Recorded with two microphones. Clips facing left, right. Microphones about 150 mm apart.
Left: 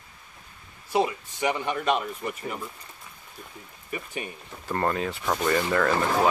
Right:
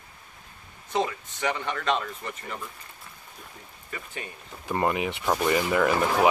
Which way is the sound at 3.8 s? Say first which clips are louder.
Left 4 dB; 15° left (ahead or behind).